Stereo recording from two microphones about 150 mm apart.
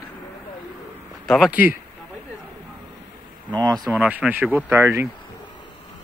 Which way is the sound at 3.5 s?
30° right (ahead or behind).